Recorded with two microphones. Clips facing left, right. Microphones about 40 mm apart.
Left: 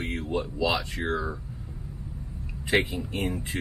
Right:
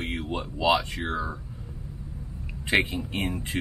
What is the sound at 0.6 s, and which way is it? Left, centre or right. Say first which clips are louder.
Speech: right 6 dB; right.